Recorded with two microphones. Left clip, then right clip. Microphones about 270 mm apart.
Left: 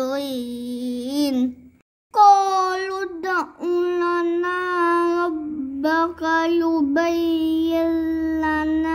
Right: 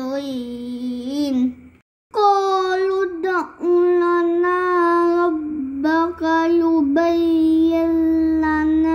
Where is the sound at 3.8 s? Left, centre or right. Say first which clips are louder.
Right 6 dB; left.